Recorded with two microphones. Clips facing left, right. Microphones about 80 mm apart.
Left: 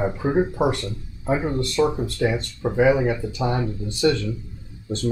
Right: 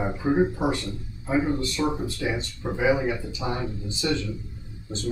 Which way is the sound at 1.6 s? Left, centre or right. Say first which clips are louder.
Left 5 dB; left.